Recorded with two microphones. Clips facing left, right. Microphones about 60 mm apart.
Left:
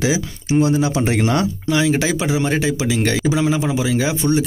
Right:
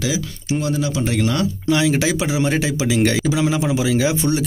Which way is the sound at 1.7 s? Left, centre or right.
Centre.